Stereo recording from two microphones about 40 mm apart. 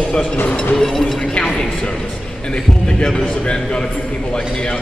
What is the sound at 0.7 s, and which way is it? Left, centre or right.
Speech, centre.